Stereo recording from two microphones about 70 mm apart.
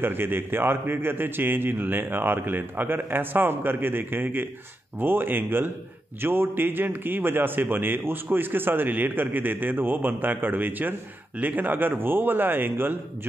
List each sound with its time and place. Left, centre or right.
0.0 s a man's voice: right